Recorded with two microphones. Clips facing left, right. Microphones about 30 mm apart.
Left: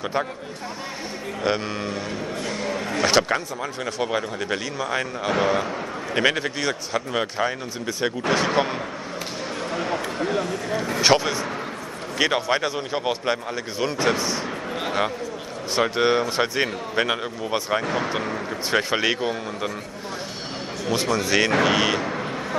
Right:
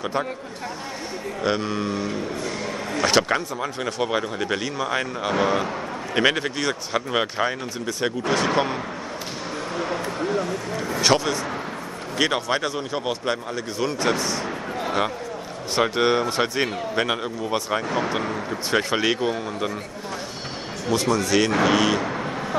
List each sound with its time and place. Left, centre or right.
0.0 s speech: centre
1.4 s speech: centre
6.9 s speech: centre
8.5 s speech: centre
10.2 s a sound: left
11.0 s speech: centre
20.9 s speech: centre
22.0 s vehicle: centre